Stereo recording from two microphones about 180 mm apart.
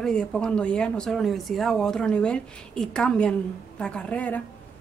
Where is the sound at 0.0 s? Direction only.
5° left (ahead or behind).